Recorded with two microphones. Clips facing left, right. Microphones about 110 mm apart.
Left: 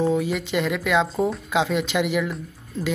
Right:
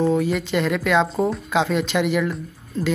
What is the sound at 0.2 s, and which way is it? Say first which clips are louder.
Speech: right 3 dB; 10° left (ahead or behind).